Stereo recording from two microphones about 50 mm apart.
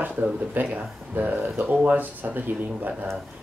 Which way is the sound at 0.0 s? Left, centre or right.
Right.